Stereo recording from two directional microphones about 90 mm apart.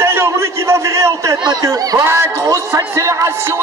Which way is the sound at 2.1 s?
35° right (ahead or behind).